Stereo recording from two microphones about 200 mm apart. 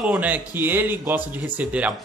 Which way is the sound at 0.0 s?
5° right (ahead or behind).